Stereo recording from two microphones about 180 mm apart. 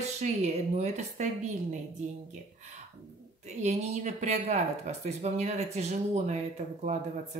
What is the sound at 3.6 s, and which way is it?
Speech, 40° right (ahead or behind).